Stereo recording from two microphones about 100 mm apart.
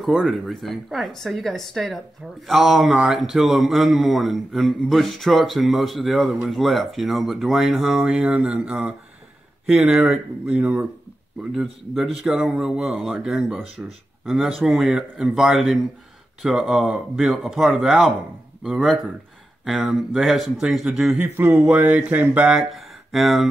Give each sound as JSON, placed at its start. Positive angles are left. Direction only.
{"t": 0.0, "sound": "a man's voice", "side_deg": 0}
{"t": 10.5, "sound": "speech", "side_deg": -15}
{"t": 11.5, "sound": "a man's voice", "side_deg": 0}
{"t": 21.2, "sound": "speech", "side_deg": -20}
{"t": 22.5, "sound": "speech", "side_deg": -5}